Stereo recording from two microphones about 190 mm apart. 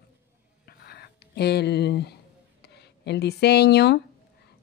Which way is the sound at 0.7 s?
55° left (ahead or behind).